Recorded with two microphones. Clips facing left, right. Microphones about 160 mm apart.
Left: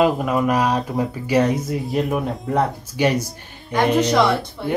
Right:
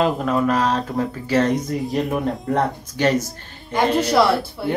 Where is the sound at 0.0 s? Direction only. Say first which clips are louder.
Left 1 dB; 10° left (ahead or behind).